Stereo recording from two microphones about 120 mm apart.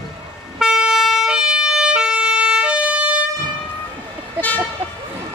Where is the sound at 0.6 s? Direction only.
5° right (ahead or behind).